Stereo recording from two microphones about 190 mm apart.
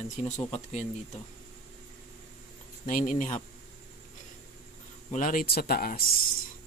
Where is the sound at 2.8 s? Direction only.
45° left (ahead or behind).